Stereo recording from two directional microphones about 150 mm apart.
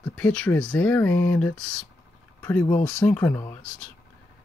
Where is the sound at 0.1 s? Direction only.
5° left (ahead or behind).